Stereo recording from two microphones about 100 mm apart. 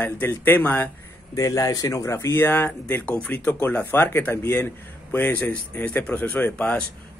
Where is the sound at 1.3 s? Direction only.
35° left (ahead or behind).